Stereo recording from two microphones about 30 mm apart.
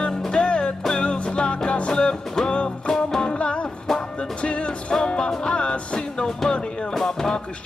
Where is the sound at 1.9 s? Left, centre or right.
Left.